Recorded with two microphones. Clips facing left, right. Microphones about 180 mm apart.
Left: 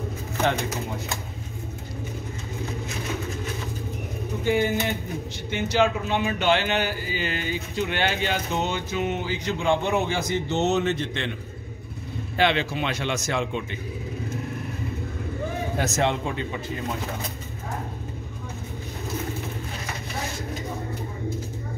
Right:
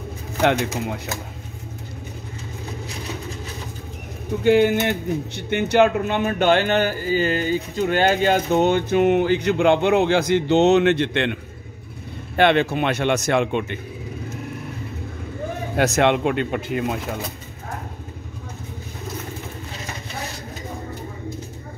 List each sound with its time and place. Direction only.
0.4 s speech: 70° right (ahead or behind)
4.5 s speech: 70° right (ahead or behind)
12.4 s speech: 55° right (ahead or behind)
15.7 s speech: 70° right (ahead or behind)